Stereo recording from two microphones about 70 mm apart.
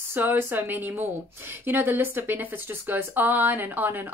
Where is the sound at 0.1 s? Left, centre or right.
Right.